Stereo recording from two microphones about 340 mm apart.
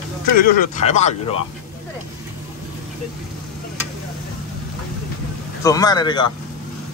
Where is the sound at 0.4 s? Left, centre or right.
Left.